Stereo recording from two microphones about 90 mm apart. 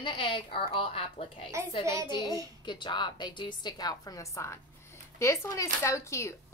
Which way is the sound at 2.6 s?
60° left (ahead or behind).